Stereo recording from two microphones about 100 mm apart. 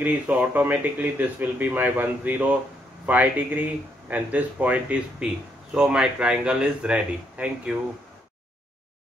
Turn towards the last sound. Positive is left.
turn(degrees=-10)  # may be behind; listen again after turning